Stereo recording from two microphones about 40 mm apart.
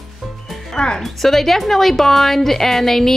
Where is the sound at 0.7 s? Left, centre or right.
Centre.